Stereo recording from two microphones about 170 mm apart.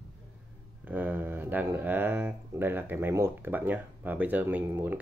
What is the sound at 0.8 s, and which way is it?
Speech, 10° right (ahead or behind).